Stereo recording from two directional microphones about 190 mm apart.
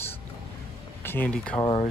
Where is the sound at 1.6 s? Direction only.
25° left (ahead or behind).